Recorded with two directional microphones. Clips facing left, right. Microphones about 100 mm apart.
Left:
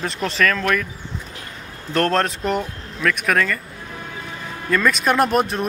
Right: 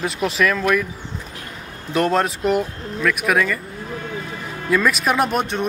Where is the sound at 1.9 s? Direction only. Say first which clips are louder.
Right 1 dB; 5° right (ahead or behind).